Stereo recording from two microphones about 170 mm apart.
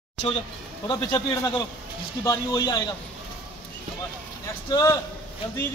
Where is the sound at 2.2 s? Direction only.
20° left (ahead or behind).